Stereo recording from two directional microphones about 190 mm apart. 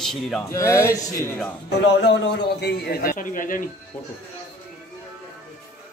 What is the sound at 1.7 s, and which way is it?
A man's voice, 65° left (ahead or behind).